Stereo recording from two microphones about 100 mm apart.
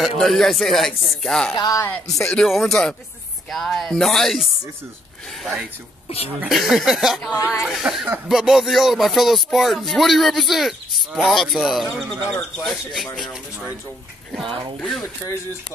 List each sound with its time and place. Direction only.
0.0 s speech: centre (ahead or behind)
1.6 s speech: 35° left (ahead or behind)
2.0 s speech: 5° left (ahead or behind)
12.3 s speech: 30° left (ahead or behind)
12.6 s speech: centre (ahead or behind)
14.4 s speech: 55° right (ahead or behind)
14.8 s speech: 5° left (ahead or behind)